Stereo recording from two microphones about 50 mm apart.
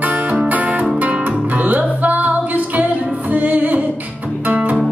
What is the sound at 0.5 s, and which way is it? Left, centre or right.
Music, right.